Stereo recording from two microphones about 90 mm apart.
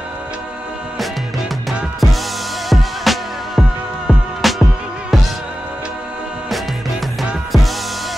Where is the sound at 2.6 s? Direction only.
Centre (ahead or behind).